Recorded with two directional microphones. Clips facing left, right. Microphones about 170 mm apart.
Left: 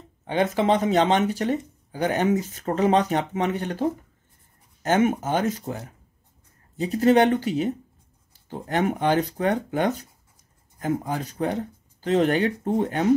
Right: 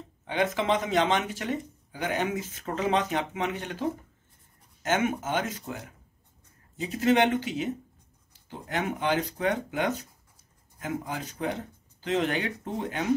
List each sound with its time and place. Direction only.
0.3 s speech: 35° left (ahead or behind)